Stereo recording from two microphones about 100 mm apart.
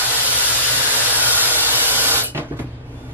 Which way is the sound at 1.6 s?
20° right (ahead or behind).